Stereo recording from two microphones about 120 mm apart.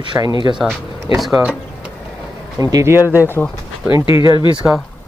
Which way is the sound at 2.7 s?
20° right (ahead or behind).